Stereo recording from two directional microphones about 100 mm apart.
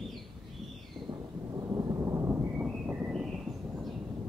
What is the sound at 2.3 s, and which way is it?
Thunder, 15° right (ahead or behind).